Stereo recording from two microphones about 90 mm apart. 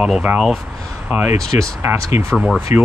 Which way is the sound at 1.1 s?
20° right (ahead or behind).